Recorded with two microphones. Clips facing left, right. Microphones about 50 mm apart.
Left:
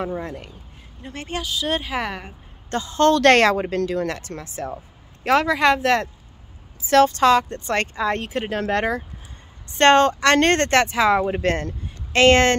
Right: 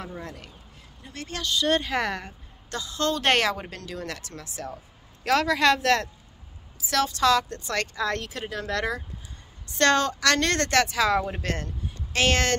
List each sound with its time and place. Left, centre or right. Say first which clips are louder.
0.0 s speech: left 10 dB; left
1.4 s speech: right 2 dB; centre
2.7 s speech: left 10 dB; left
3.1 s speech: left 8 dB; left
6.8 s speech: left 8 dB; left
8.0 s speech: left 5 dB; left
8.5 s speech: left 6 dB; left
11.4 s speech: left 9 dB; left